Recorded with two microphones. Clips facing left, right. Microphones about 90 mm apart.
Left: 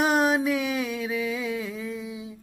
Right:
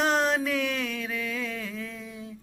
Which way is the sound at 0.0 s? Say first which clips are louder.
Left 3 dB; 10° left (ahead or behind).